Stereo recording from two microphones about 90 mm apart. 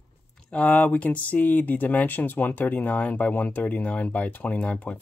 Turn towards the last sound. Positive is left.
turn(degrees=15)  # may be behind; listen again after turning